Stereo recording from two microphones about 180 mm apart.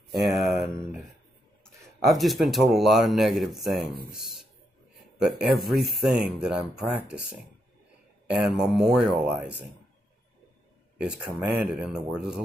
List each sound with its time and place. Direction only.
0.1 s speech: 65° right (ahead or behind)
1.6 s speech: centre (ahead or behind)
11.0 s speech: 5° right (ahead or behind)